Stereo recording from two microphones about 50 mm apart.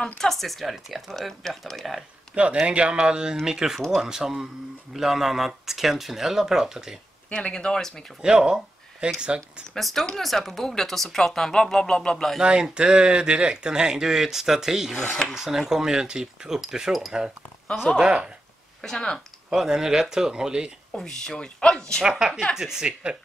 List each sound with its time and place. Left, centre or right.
0.2 s speech: centre
2.6 s speech: right
7.3 s speech: centre
8.2 s speech: centre
9.8 s speech: centre
12.4 s speech: centre
18.8 s speech: centre
19.5 s speech: centre
20.9 s speech: centre
22.6 s speech: centre